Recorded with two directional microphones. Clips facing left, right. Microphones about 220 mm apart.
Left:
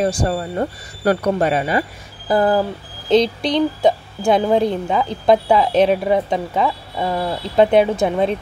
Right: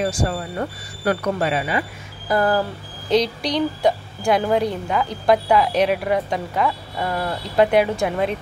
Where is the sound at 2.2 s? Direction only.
25° left (ahead or behind).